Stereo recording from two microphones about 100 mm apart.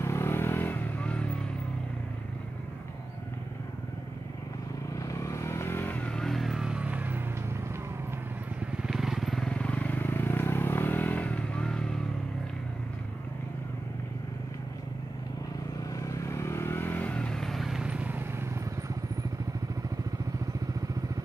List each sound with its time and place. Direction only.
0.0 s vehicle: 25° left (ahead or behind)
4.9 s vehicle: 30° left (ahead or behind); by 7.2 s 15° right (ahead or behind)
8.8 s vehicle: 5° right (ahead or behind)
16.0 s vehicle: 30° left (ahead or behind); by 18.2 s 15° right (ahead or behind)